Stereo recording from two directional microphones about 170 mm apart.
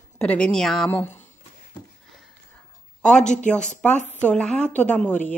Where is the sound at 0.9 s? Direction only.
10° left (ahead or behind).